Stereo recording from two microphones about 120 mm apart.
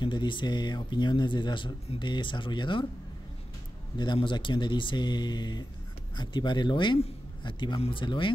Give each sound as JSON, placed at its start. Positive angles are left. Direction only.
{"t": 0.0, "sound": "speech", "side_deg": 40}
{"t": 4.0, "sound": "speech", "side_deg": 40}